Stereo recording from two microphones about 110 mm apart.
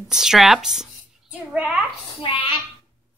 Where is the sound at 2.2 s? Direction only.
50° left (ahead or behind).